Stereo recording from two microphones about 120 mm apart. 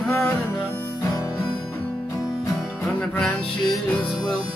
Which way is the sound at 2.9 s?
10° left (ahead or behind).